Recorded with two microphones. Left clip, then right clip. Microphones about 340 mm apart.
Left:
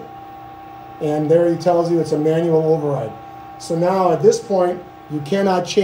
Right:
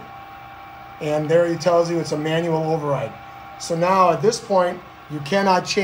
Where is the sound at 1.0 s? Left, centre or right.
Right.